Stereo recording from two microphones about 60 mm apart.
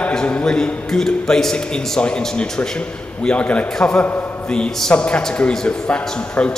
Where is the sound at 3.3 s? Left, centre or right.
Left.